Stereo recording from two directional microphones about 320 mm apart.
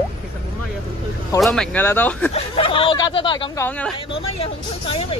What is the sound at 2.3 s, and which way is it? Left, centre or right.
Speech, centre.